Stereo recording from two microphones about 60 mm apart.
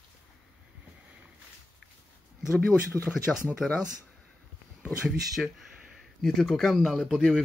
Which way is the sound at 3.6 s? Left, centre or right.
Centre.